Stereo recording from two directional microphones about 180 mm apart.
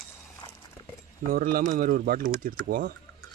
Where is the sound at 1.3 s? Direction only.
55° right (ahead or behind).